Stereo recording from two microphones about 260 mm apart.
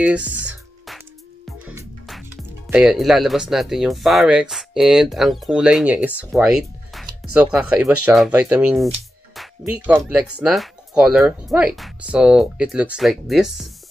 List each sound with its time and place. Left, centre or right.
0.0 s music: centre
1.7 s speech: centre